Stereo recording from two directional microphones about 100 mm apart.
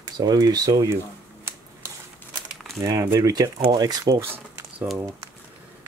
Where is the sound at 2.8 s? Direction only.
35° right (ahead or behind).